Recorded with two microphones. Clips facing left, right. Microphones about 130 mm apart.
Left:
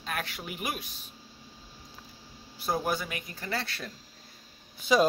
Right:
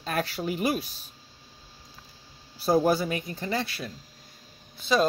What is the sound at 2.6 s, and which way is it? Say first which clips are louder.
Speech: right 8 dB; 35° right (ahead or behind).